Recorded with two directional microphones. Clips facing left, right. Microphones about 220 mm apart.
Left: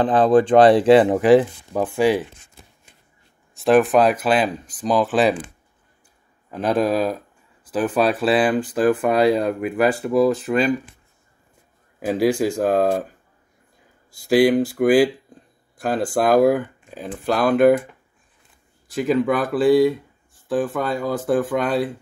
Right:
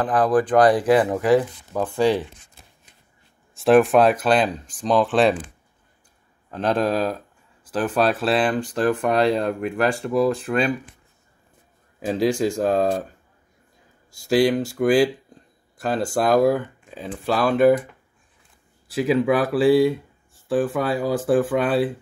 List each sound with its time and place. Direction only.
0.0 s speech: 25° left (ahead or behind)
1.8 s speech: 10° left (ahead or behind)
3.5 s speech: centre (ahead or behind)
6.5 s speech: 5° left (ahead or behind)
12.0 s speech: 5° left (ahead or behind)
14.3 s speech: 5° left (ahead or behind)
16.1 s speech: centre (ahead or behind)
18.9 s speech: 5° right (ahead or behind)